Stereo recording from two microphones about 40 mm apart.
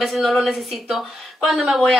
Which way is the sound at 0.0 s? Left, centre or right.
Centre.